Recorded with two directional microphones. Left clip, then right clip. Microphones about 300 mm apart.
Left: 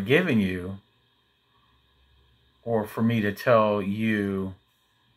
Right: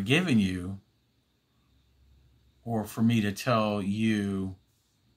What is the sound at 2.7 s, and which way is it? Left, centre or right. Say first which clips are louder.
Speech: left 4 dB; right.